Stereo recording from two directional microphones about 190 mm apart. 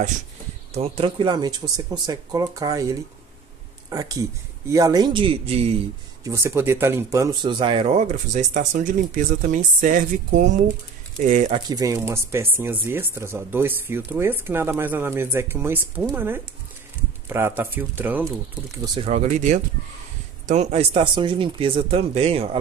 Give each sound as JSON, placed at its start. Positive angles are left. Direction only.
{"t": 0.7, "sound": "speech", "side_deg": -30}
{"t": 6.2, "sound": "speech", "side_deg": -15}
{"t": 7.5, "sound": "speech", "side_deg": -25}
{"t": 11.5, "sound": "speech", "side_deg": -20}
{"t": 18.9, "sound": "speech", "side_deg": -35}